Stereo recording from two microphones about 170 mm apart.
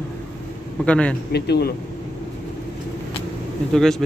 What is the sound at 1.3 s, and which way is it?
Speech, 75° left (ahead or behind).